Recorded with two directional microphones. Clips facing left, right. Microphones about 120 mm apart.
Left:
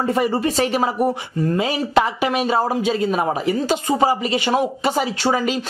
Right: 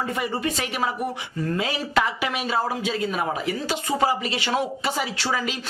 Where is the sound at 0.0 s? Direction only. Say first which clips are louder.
Left 7 dB; 35° left (ahead or behind).